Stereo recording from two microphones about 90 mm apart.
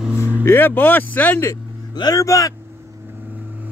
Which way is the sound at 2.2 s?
40° left (ahead or behind).